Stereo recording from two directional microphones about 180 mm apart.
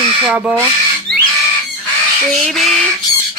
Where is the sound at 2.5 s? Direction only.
Centre (ahead or behind).